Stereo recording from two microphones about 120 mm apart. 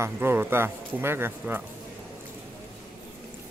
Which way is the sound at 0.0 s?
20° right (ahead or behind).